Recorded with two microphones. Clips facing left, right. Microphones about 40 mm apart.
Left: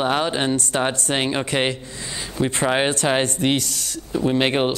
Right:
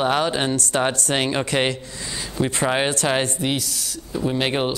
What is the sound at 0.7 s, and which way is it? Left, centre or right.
Speech, centre.